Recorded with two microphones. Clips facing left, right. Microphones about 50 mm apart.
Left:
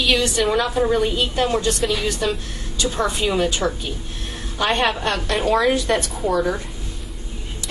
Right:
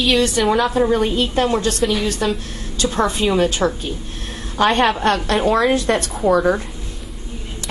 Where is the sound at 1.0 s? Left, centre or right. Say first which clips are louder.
Right 2 dB; right.